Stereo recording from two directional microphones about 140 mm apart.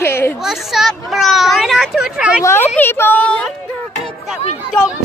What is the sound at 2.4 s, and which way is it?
Speech, 20° left (ahead or behind).